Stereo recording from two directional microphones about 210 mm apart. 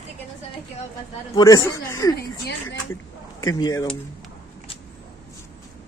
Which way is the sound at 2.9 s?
15° left (ahead or behind).